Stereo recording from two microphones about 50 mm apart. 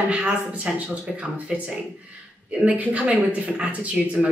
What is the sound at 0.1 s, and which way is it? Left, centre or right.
Speech, right.